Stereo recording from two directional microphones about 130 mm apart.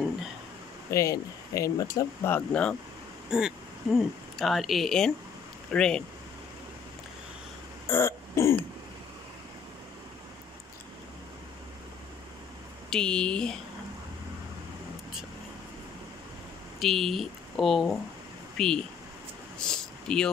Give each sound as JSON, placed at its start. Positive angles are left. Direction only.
{"t": 0.8, "sound": "speech", "side_deg": 25}
{"t": 2.3, "sound": "speech", "side_deg": 10}
{"t": 3.3, "sound": "speech", "side_deg": -5}
{"t": 7.9, "sound": "throat clearing", "side_deg": 20}
{"t": 12.9, "sound": "speech", "side_deg": 5}
{"t": 16.8, "sound": "speech", "side_deg": 0}
{"t": 19.7, "sound": "a sound", "side_deg": 5}